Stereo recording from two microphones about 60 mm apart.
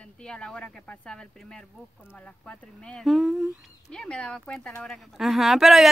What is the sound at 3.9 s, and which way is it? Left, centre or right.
Speech, centre.